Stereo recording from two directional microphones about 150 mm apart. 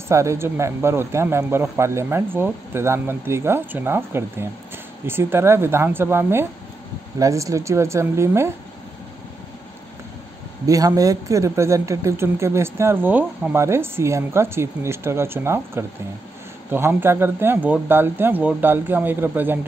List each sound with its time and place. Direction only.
0.1 s a woman's voice: 20° right (ahead or behind)
10.7 s speech: 25° right (ahead or behind)